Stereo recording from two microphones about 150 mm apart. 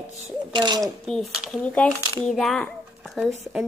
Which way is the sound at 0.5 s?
30° right (ahead or behind).